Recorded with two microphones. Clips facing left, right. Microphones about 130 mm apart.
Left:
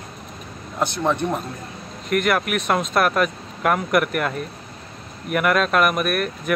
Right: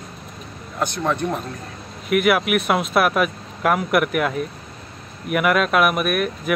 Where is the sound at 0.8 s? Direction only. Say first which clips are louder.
Left 1 dB; 15° left (ahead or behind).